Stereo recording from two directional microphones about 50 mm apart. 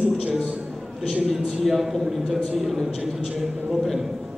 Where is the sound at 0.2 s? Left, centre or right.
Centre.